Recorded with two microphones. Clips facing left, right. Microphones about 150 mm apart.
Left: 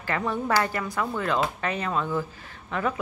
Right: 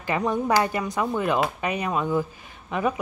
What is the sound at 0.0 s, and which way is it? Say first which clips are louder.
Speech: right 3 dB; 15° right (ahead or behind).